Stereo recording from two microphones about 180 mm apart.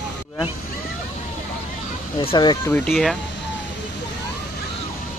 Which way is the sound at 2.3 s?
25° left (ahead or behind).